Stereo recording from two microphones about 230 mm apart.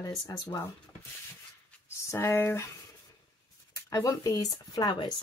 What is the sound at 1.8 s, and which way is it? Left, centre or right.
Speech, centre.